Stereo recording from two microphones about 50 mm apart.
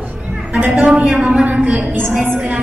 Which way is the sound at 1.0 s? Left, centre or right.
Centre.